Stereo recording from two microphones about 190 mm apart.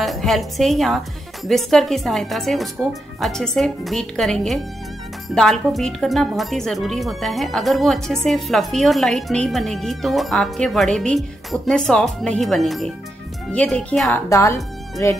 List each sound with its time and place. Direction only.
0.0 s speech: centre (ahead or behind)
14.1 s speech: 15° left (ahead or behind)